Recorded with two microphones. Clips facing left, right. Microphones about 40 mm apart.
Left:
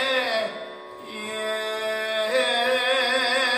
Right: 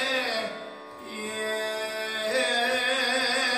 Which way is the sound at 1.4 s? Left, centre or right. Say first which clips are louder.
Left 4 dB; left.